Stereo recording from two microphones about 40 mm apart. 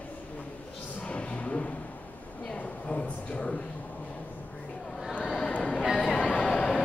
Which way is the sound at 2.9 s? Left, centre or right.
Left.